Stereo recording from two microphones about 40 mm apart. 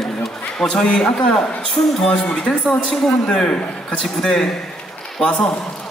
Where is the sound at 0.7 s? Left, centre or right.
Left.